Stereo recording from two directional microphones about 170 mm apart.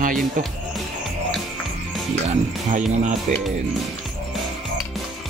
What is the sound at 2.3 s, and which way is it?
Speech, 45° right (ahead or behind).